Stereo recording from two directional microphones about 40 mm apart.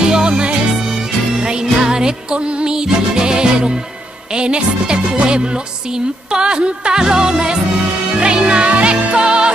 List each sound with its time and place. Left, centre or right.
0.0 s music: right
8.2 s speech: right
9.1 s music: right